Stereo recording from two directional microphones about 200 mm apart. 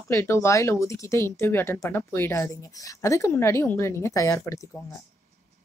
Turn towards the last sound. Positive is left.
turn(degrees=15)  # may be behind; listen again after turning